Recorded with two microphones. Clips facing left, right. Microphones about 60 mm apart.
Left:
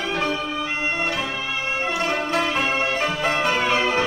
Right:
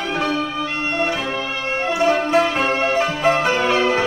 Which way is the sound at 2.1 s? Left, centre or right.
Centre.